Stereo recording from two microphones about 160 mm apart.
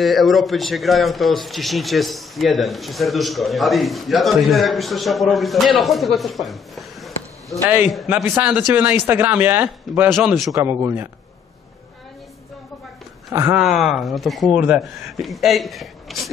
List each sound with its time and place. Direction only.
0.0 s a man's voice: centre (ahead or behind)
7.6 s speech: 15° right (ahead or behind)
10.0 s a man's voice: centre (ahead or behind)
10.5 s speech: 15° right (ahead or behind)
13.3 s speech: 15° right (ahead or behind)
13.6 s a man's voice: centre (ahead or behind)